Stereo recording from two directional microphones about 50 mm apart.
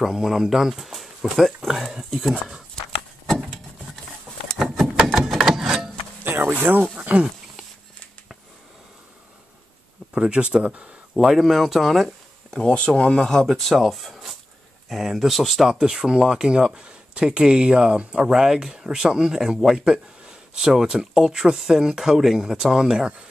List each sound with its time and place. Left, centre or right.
0.0 s speech: centre
4.7 s a sound: centre
6.2 s a sound: right
10.1 s speech: centre
11.1 s speech: centre
12.4 s speech: centre
12.8 s speech: left; by 15.7 s centre
15.7 s speech: centre